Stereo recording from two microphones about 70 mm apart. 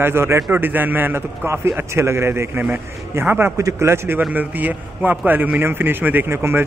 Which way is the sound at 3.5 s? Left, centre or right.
Right.